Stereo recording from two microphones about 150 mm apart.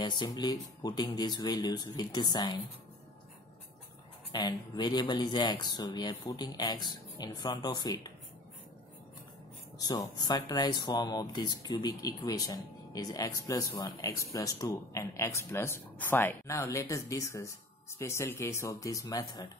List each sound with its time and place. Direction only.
0.0 s speech: 30° left (ahead or behind)
4.3 s speech: 30° left (ahead or behind)
9.8 s speech: 25° left (ahead or behind)